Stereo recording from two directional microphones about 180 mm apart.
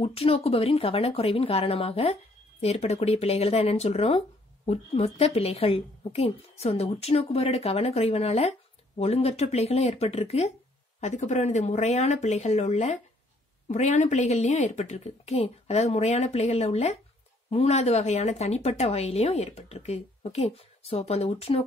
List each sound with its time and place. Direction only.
0.0 s a woman's voice: 35° left (ahead or behind)